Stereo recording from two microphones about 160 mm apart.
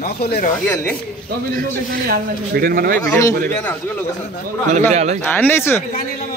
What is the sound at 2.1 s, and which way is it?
Speech, 70° right (ahead or behind).